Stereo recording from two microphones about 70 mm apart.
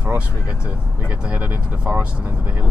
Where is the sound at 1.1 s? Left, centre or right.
Right.